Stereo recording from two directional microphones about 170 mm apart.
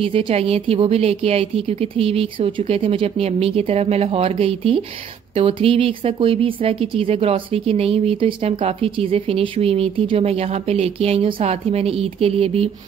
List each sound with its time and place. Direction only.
0.0 s speech: 35° right (ahead or behind)